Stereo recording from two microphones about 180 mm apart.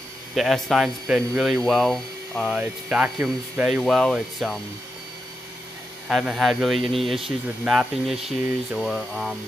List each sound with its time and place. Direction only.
0.4 s speech: centre (ahead or behind)
6.0 s speech: 5° right (ahead or behind)